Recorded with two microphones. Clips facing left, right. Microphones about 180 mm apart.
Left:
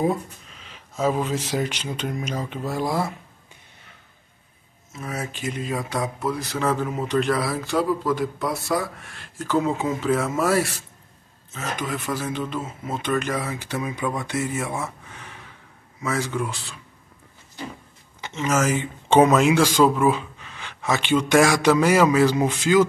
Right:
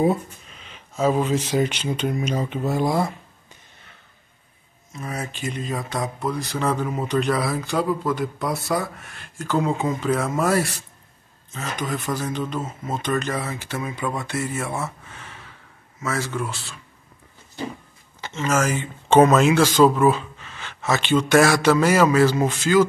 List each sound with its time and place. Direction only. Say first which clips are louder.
0.9 s speech: right 2 dB; 10° right (ahead or behind)
1.2 s speech: right 4 dB; centre (ahead or behind)
5.0 s speech: even; 5° left (ahead or behind)
16.0 s speech: left 1 dB; 15° left (ahead or behind)
18.2 s speech: even; 15° left (ahead or behind)